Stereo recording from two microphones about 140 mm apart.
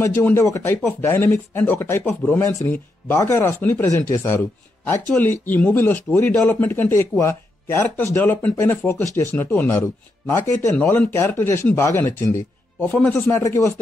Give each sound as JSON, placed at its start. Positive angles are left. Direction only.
{"t": 0.0, "sound": "speech", "side_deg": 20}
{"t": 10.8, "sound": "speech", "side_deg": 10}